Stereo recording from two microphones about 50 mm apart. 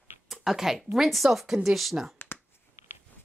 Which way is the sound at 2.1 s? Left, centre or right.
Left.